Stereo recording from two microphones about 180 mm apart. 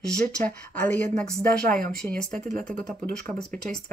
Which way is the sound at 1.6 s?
50° right (ahead or behind).